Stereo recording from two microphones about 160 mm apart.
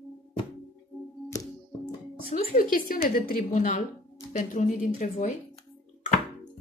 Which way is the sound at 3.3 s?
50° left (ahead or behind).